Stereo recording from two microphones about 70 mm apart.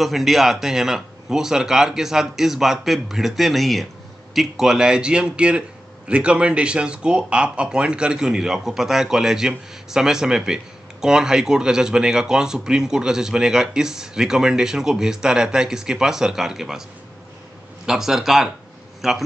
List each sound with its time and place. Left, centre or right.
0.0 s a man's voice: centre
17.8 s a man's voice: centre